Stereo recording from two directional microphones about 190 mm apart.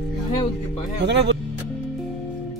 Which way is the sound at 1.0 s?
65° right (ahead or behind).